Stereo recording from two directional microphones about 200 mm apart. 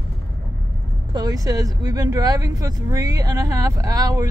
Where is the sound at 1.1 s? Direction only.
20° right (ahead or behind).